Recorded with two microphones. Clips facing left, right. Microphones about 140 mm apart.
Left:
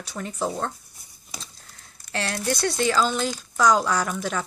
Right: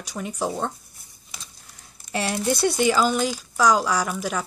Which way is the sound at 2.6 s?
10° right (ahead or behind).